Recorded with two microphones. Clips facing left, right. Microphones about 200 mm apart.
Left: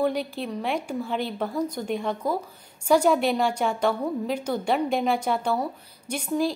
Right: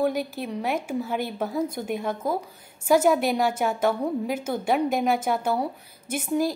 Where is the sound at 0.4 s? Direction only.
10° right (ahead or behind).